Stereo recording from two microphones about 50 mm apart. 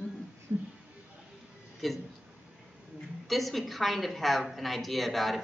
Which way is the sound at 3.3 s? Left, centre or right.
Centre.